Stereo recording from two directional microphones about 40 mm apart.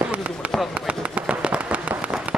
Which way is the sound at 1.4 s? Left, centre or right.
Right.